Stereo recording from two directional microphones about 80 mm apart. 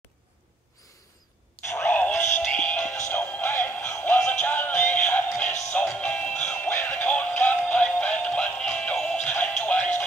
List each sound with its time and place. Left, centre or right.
1.6 s a sound: left
2.1 s synthetic singing: left
2.4 s music: centre
7.6 s synthetic singing: centre
8.6 s music: centre